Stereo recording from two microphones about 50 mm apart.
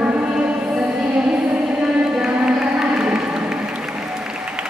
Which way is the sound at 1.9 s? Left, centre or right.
Centre.